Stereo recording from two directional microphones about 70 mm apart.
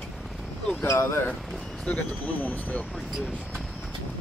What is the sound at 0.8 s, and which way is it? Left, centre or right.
Speech, left.